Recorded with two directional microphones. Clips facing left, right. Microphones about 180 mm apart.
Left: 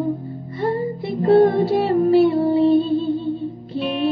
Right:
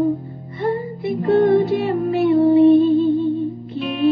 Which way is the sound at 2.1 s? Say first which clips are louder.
Right 4 dB; 30° left (ahead or behind).